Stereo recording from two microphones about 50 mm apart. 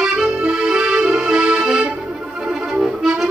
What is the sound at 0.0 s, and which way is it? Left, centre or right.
Accordion, centre.